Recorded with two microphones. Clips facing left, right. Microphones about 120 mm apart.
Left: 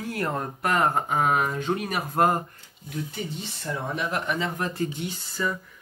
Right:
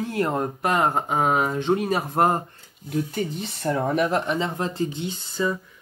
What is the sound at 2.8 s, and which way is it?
Speech, 50° right (ahead or behind).